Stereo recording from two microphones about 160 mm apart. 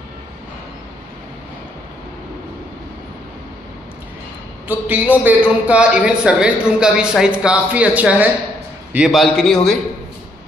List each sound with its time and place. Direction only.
4.6 s a man's voice: 10° right (ahead or behind)